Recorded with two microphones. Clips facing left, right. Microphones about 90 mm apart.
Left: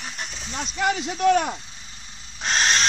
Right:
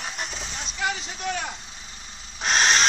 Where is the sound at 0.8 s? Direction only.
55° left (ahead or behind).